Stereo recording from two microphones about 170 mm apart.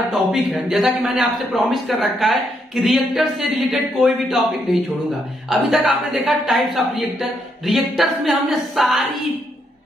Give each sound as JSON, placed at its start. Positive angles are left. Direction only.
{"t": 0.1, "sound": "a man's voice", "side_deg": 0}